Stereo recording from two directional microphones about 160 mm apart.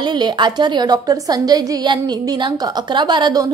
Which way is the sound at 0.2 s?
25° right (ahead or behind).